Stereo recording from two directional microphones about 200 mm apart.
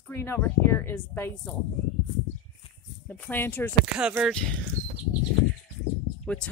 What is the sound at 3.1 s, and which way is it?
Speech, 10° left (ahead or behind).